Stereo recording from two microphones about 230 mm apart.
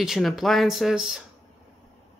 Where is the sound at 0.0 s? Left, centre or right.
Centre.